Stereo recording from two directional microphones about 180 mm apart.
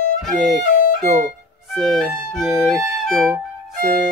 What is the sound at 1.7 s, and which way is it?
Speech, centre (ahead or behind).